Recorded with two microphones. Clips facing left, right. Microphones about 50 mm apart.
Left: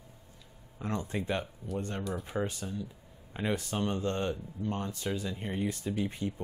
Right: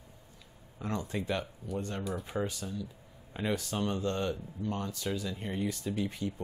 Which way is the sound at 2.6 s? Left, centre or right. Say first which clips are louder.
Left 1 dB; left.